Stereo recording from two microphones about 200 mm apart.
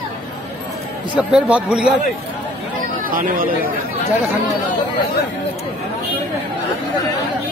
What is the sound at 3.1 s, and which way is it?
Speech, 45° right (ahead or behind).